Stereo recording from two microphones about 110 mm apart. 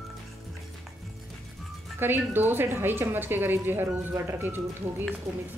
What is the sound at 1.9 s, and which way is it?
A woman's voice, 20° right (ahead or behind).